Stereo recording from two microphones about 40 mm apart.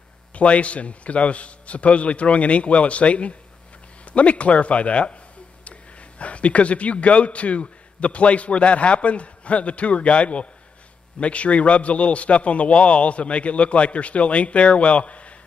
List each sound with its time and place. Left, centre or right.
0.3 s a man's voice: left